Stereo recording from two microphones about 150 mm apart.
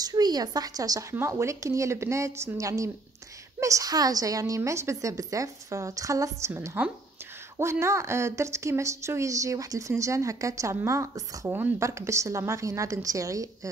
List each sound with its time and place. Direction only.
0.0 s speech: 25° right (ahead or behind)